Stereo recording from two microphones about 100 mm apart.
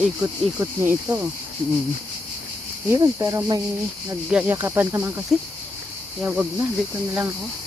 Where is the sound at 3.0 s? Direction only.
35° right (ahead or behind).